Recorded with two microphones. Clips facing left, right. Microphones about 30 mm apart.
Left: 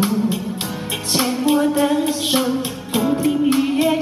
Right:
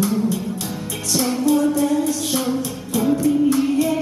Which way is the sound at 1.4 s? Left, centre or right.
Left.